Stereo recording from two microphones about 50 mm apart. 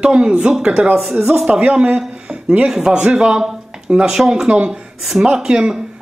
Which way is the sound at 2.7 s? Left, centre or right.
Centre.